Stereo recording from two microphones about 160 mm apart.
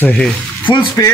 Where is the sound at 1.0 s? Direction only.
20° left (ahead or behind).